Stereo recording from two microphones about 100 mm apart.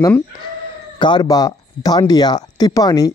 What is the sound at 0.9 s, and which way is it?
Speech, 50° left (ahead or behind).